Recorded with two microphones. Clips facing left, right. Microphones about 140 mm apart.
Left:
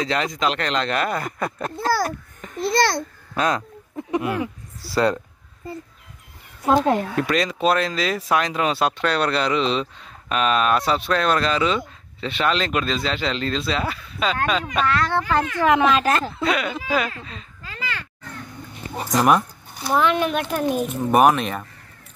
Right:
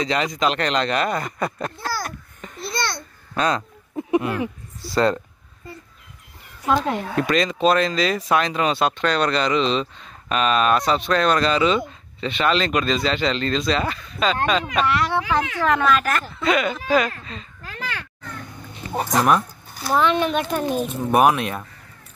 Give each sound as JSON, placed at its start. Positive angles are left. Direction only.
{"t": 0.0, "sound": "speech", "side_deg": 0}
{"t": 2.6, "sound": "a child's voice", "side_deg": 90}
{"t": 3.3, "sound": "speech", "side_deg": 5}
{"t": 4.8, "sound": "speech", "side_deg": 5}
{"t": 6.6, "sound": "speech", "side_deg": 30}
{"t": 7.2, "sound": "speech", "side_deg": 5}
{"t": 15.6, "sound": "speech", "side_deg": 20}
{"t": 16.1, "sound": "speech", "side_deg": 30}
{"t": 16.4, "sound": "speech", "side_deg": 5}
{"t": 17.6, "sound": "a sound", "side_deg": -55}
{"t": 19.2, "sound": "speech", "side_deg": 0}